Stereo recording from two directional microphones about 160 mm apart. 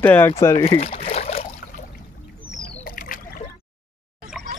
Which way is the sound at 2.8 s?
65° left (ahead or behind).